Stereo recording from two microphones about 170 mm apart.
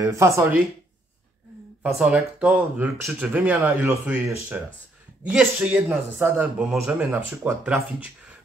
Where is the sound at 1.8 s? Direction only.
5° right (ahead or behind).